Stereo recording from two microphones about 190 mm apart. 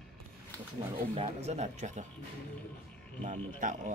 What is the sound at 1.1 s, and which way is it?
Speech, 35° right (ahead or behind).